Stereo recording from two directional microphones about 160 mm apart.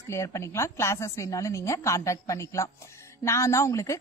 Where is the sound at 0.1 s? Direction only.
20° left (ahead or behind).